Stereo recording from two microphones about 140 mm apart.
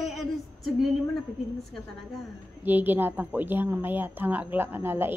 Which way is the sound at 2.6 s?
15° right (ahead or behind).